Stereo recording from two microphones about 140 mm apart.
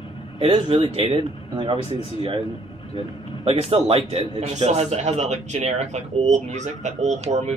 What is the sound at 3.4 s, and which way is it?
A man's voice, 45° right (ahead or behind).